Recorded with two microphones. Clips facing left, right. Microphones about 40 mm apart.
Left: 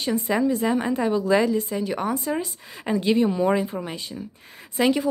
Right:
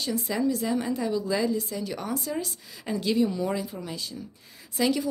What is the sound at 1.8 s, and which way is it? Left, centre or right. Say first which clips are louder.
A woman's voice: left 6 dB; left.